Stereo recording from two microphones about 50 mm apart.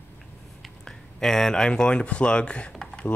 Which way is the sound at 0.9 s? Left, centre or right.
Centre.